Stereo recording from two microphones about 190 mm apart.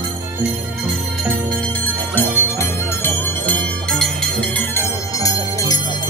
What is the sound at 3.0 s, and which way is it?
Bell, 5° left (ahead or behind).